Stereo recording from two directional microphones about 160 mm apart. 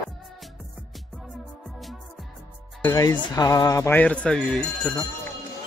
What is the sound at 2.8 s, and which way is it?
Speech, 20° left (ahead or behind).